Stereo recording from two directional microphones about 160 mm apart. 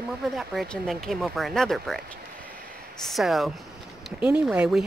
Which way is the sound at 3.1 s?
Centre (ahead or behind).